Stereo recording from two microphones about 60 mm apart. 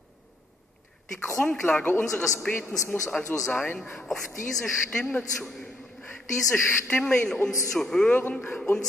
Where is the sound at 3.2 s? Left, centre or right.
Left.